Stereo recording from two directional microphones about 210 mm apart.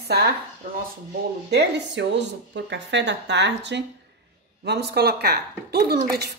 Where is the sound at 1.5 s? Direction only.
55° right (ahead or behind).